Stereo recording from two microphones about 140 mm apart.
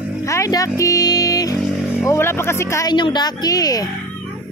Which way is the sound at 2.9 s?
30° left (ahead or behind).